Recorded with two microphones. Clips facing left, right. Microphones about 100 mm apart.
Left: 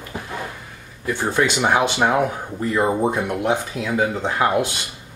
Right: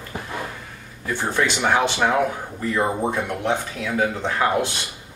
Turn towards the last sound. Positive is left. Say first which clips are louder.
# left 2 dB
turn(degrees=15)  # may be behind; listen again after turning